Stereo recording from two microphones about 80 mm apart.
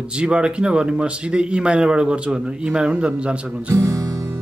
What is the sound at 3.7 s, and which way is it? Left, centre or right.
Music, right.